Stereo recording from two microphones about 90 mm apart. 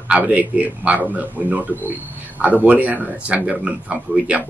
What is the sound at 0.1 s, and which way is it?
A man's voice, 15° right (ahead or behind).